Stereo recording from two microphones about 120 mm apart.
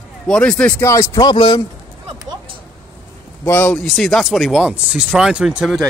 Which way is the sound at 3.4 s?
15° left (ahead or behind).